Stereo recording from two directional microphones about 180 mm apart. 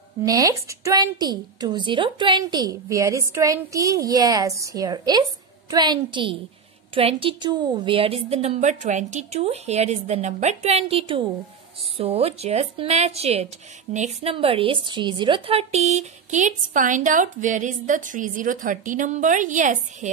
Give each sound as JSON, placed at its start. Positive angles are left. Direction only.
{"t": 0.2, "sound": "a woman's voice", "side_deg": -20}